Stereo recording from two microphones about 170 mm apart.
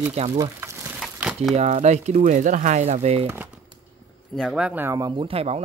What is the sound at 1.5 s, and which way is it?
Speech, 40° right (ahead or behind).